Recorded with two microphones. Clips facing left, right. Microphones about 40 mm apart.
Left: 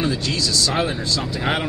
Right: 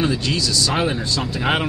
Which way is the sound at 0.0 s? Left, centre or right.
Right.